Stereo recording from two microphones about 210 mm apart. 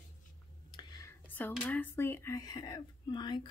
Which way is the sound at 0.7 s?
15° left (ahead or behind).